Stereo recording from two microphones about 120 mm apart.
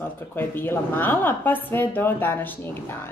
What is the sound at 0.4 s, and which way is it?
Speech, 15° left (ahead or behind).